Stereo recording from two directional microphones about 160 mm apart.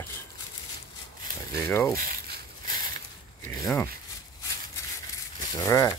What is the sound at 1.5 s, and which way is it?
Speech, 15° left (ahead or behind).